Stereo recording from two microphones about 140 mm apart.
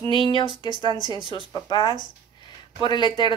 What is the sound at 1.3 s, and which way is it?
Speech, 35° left (ahead or behind).